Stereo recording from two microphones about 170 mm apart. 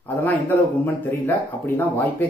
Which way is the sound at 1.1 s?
10° left (ahead or behind).